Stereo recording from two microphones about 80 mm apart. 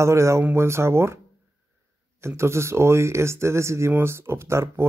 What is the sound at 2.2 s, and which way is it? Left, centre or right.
Speech, right.